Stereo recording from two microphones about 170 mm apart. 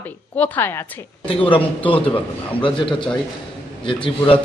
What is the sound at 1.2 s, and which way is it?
Speech, 30° left (ahead or behind).